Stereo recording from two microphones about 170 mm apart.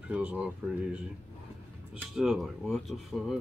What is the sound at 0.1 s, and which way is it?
Speech, 5° right (ahead or behind).